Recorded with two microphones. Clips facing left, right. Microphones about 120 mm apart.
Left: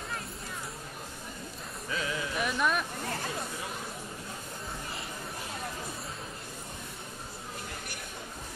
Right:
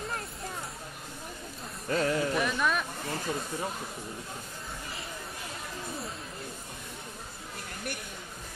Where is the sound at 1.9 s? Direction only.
50° right (ahead or behind).